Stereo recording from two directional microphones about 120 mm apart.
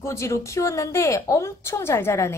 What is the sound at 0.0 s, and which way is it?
A woman's voice, 25° left (ahead or behind).